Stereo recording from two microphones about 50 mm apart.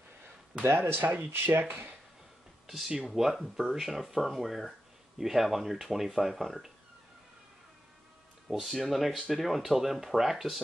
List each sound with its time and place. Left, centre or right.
0.8 s speech: right
3.1 s speech: centre
8.5 s speech: centre